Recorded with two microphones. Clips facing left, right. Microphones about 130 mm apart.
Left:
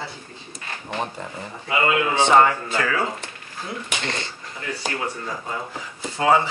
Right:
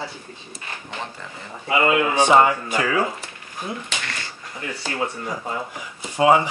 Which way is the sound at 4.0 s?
25° left (ahead or behind).